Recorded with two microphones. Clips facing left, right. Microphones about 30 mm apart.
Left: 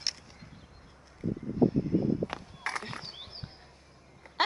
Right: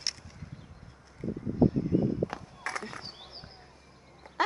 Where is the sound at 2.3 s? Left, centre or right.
Left.